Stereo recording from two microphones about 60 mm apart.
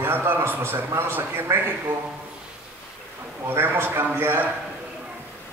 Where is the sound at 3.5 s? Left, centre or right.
Right.